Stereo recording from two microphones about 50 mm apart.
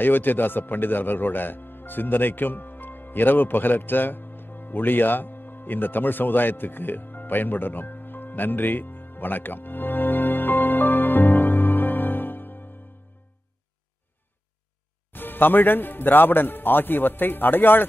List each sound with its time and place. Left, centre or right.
0.0 s speech: left
15.1 s speech: left